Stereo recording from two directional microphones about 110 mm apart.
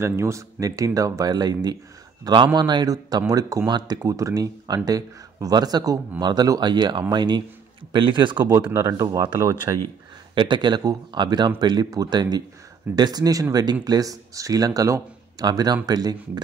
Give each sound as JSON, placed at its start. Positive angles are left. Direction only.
{"t": 0.0, "sound": "a man's voice", "side_deg": -25}
{"t": 8.7, "sound": "a man's voice", "side_deg": -30}
{"t": 10.3, "sound": "a man's voice", "side_deg": -45}